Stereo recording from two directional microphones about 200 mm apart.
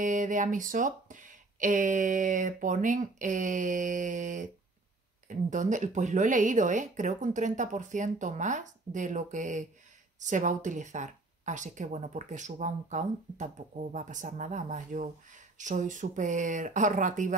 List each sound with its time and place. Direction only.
0.0 s speech: 40° right (ahead or behind)